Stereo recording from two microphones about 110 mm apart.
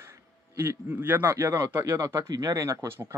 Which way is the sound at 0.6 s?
20° right (ahead or behind).